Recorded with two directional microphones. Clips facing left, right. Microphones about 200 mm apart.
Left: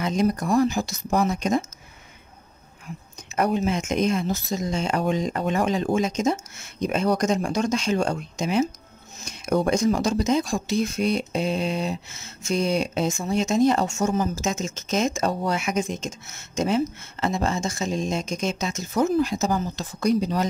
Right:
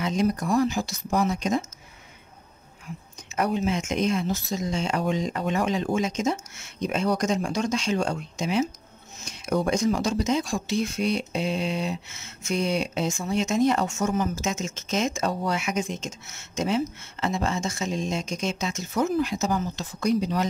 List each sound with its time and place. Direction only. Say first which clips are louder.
0.0 s speech: left 2 dB; 45° left (ahead or behind)
3.3 s speech: left 2 dB; 45° left (ahead or behind)